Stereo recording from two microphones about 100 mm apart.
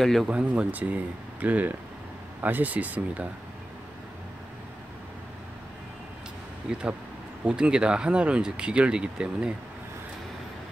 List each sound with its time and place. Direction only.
0.0 s speech: centre (ahead or behind)
0.3 s speech: 10° right (ahead or behind)
6.7 s speech: 10° right (ahead or behind)